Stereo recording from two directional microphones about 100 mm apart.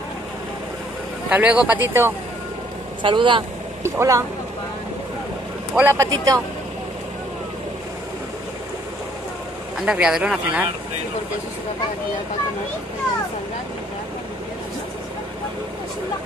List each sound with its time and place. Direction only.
1.3 s speech: 10° right (ahead or behind)
1.8 s speech: 20° right (ahead or behind)
3.0 s speech: 55° right (ahead or behind)
3.8 s speech: 30° right (ahead or behind)
5.8 s speech: 20° right (ahead or behind)
6.0 s speech: 40° right (ahead or behind)
9.8 s speech: 10° right (ahead or behind)